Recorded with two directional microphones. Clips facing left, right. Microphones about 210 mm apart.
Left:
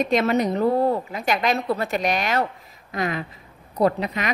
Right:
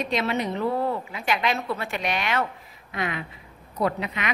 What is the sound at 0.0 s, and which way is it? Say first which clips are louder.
A woman's voice: left 6 dB; 45° left (ahead or behind).